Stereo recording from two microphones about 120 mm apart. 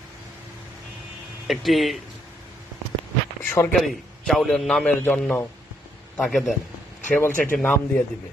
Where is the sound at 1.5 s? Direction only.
Centre (ahead or behind).